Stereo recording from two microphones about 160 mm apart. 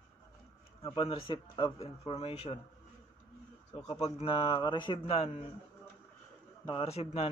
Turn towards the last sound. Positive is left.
turn(degrees=40)  # may be behind; listen again after turning